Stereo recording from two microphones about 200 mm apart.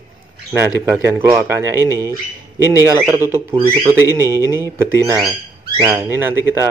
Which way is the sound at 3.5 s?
25° right (ahead or behind).